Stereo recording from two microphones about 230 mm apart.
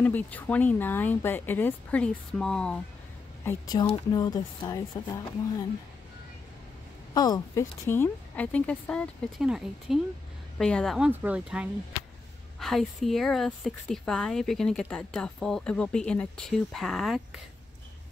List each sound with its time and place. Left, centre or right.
0.0 s speech: centre
3.4 s speech: centre
7.2 s speech: centre